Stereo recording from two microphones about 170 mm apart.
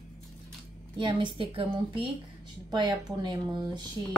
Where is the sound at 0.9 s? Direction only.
30° right (ahead or behind).